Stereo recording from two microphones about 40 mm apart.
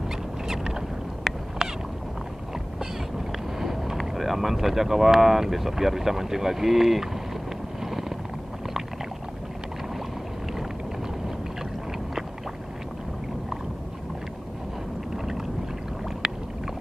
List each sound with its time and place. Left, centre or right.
0.5 s boat: centre
2.8 s a sound: centre
4.0 s speech: centre
7.8 s vehicle: centre
16.2 s boat: centre